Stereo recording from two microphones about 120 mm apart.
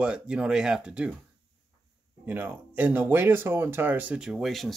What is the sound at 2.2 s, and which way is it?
Speech, 15° right (ahead or behind).